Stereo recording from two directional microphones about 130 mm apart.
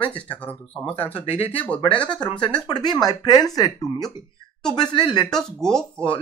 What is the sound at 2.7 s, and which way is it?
Speech, 35° left (ahead or behind).